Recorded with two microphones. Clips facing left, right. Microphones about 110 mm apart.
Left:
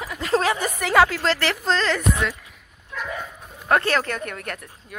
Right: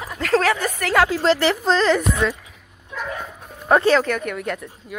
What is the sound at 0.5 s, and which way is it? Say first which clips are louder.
Speech: left 1 dB; 5° left (ahead or behind).